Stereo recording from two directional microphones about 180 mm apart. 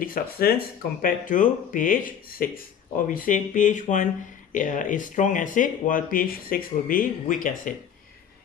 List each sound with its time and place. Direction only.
0.0 s speech: 55° left (ahead or behind)